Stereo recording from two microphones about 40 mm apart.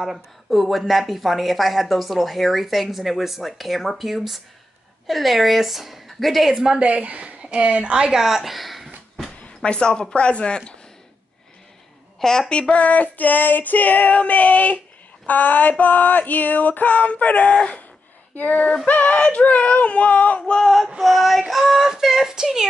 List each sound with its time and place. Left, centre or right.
0.0 s a woman's voice: centre
6.6 s a woman's voice: right
8.1 s a sound: centre
9.6 s speech: left
12.2 s a woman's voice: centre
12.4 s female singing: left
15.2 s a sound: left
18.3 s female singing: left
20.6 s a woman's voice: centre